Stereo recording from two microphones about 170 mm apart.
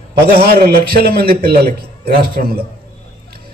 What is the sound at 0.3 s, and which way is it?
A man's voice, 65° right (ahead or behind).